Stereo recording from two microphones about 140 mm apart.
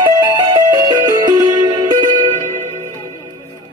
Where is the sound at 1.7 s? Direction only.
35° right (ahead or behind).